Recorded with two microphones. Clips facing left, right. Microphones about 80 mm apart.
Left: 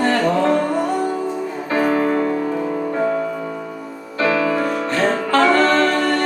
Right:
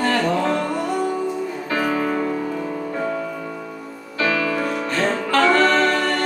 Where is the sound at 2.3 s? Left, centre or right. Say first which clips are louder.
Left 4 dB; left; by 6.1 s centre.